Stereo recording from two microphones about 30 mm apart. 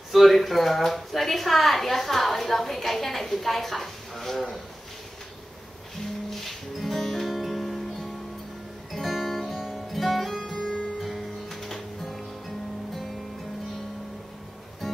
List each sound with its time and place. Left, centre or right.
0.1 s a woman's voice: centre
5.9 s music: centre
8.9 s guitar: centre
10.5 s music: left
11.0 s music: centre
11.4 s music: centre